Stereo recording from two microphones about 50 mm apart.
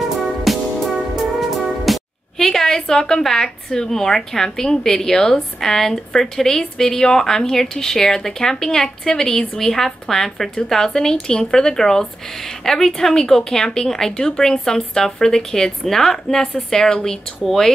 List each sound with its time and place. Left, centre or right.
0.0 s music: centre
1.9 s speech: centre